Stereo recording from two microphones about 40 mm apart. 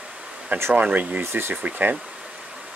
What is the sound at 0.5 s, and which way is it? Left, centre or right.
Speech, right.